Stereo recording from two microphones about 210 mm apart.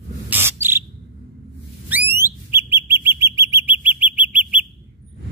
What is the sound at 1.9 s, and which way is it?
Bird, 10° right (ahead or behind).